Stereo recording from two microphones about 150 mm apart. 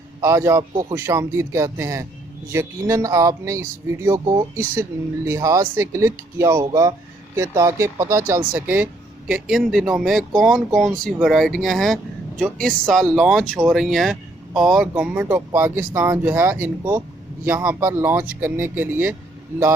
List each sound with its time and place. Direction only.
0.2 s speech: 20° right (ahead or behind)